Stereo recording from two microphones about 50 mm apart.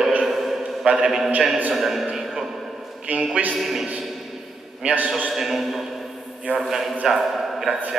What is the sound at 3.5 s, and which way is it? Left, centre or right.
Speech, centre.